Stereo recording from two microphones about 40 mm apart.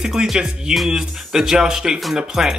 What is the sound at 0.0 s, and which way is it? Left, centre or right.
Speech, centre.